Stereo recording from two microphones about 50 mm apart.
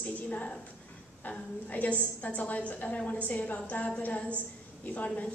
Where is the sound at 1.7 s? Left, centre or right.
Left.